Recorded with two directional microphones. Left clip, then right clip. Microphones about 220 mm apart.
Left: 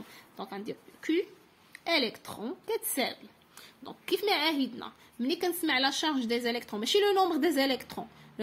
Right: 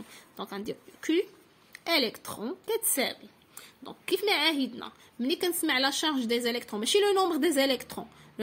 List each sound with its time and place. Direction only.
0.1 s a woman's voice: 15° right (ahead or behind)